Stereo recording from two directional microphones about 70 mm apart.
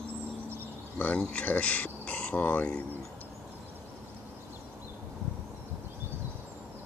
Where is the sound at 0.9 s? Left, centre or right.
Centre.